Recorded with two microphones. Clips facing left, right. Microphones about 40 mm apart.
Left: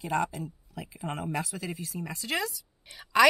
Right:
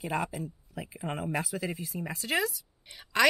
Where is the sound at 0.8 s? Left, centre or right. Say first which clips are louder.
Even; centre.